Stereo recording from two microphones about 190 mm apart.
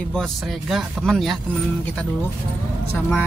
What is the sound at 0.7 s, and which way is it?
Speech, centre (ahead or behind).